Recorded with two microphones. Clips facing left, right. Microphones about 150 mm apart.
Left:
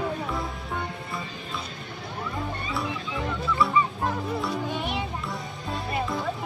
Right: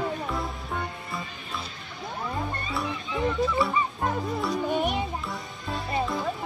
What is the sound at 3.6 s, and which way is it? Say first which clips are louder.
Goose: left 2 dB; centre (ahead or behind).